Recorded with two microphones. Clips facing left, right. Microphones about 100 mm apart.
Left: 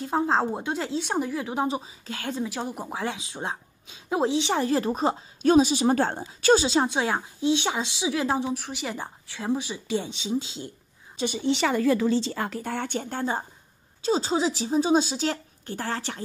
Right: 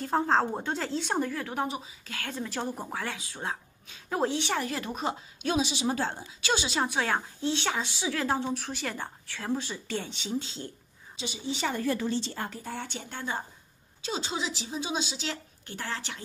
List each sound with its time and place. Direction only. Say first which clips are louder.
0.0 s speech: left 2 dB; 5° left (ahead or behind)
1.3 s a woman's voice: left 5 dB; 20° left (ahead or behind)
2.4 s a woman's voice: left 3 dB; 10° left (ahead or behind)
4.6 s a woman's voice: left 8 dB; 35° left (ahead or behind)
6.7 s speech: left 4 dB; 25° left (ahead or behind)
11.1 s a woman's voice: left 9 dB; 60° left (ahead or behind)
14.0 s a woman's voice: left 9 dB; 35° left (ahead or behind)